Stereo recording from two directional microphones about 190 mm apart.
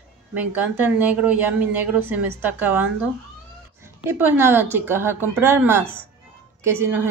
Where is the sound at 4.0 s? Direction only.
10° right (ahead or behind).